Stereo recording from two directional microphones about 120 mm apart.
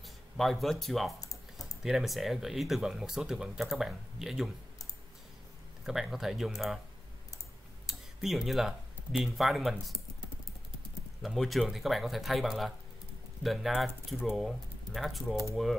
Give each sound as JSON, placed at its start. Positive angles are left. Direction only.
{"t": 0.4, "sound": "speech", "side_deg": 0}
{"t": 5.9, "sound": "speech", "side_deg": -5}
{"t": 7.8, "sound": "speech", "side_deg": -5}
{"t": 11.2, "sound": "speech", "side_deg": 0}